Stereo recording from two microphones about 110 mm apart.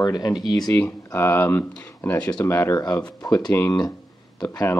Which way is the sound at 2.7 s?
35° left (ahead or behind).